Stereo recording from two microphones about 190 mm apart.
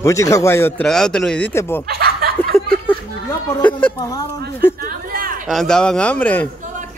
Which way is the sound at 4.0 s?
20° left (ahead or behind).